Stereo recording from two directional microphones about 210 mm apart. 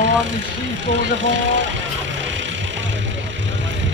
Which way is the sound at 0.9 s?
60° right (ahead or behind).